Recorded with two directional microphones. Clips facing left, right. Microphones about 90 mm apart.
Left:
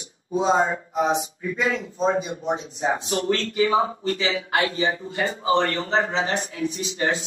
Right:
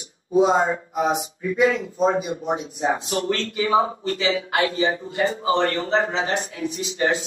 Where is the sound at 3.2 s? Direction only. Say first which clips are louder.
Left 2 dB; 35° right (ahead or behind).